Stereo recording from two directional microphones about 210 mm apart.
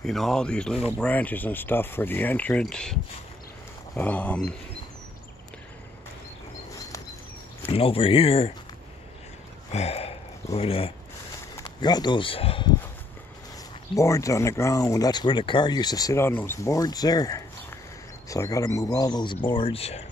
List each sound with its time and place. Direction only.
0.0 s speech: centre (ahead or behind)
7.6 s speech: 25° left (ahead or behind)
9.7 s speech: 30° left (ahead or behind)
13.9 s speech: 15° left (ahead or behind)